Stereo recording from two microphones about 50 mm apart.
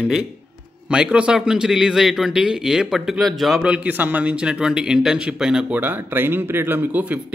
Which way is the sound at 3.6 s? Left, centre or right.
Right.